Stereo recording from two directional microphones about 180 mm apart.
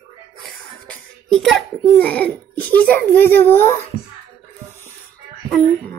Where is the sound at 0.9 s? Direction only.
Centre (ahead or behind).